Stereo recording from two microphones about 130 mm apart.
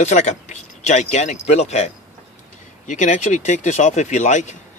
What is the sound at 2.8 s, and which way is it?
A man's voice, 70° left (ahead or behind).